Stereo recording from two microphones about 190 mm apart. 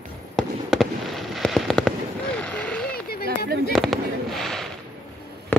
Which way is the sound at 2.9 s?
55° left (ahead or behind).